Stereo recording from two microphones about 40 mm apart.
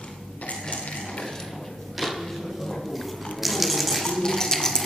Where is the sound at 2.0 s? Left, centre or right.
Centre.